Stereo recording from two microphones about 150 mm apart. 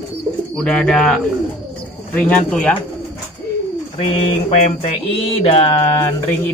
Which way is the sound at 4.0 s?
40° left (ahead or behind).